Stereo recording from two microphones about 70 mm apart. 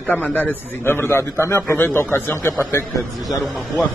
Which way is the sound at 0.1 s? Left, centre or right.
Left.